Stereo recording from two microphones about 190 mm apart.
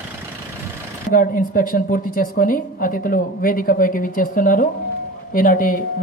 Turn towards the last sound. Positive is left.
turn(degrees=45)  # may be behind; listen again after turning